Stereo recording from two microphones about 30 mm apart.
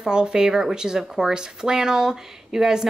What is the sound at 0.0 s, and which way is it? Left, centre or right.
Speech, right.